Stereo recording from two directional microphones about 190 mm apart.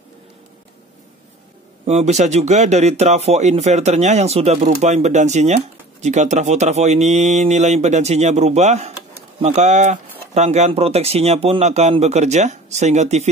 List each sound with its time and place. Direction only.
1.9 s speech: 35° right (ahead or behind)